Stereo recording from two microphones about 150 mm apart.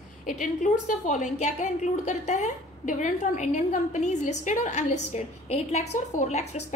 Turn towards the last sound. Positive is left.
turn(degrees=50)  # may be behind; listen again after turning